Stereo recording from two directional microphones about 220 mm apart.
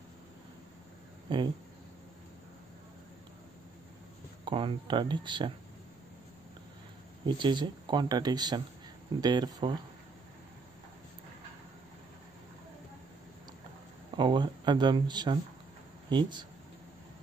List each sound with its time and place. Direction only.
1.3 s speech: 20° right (ahead or behind)
4.5 s speech: 20° right (ahead or behind)
7.2 s speech: 20° right (ahead or behind)
14.1 s speech: 20° right (ahead or behind)